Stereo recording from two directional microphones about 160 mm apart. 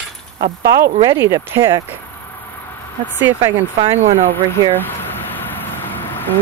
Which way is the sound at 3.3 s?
15° right (ahead or behind).